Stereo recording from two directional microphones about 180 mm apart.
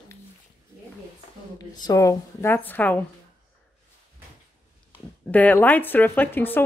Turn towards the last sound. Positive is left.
turn(degrees=10)  # may be behind; listen again after turning